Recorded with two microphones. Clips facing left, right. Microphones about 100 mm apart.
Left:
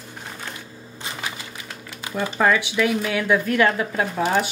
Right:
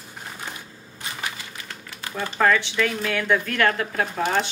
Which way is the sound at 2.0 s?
15° left (ahead or behind).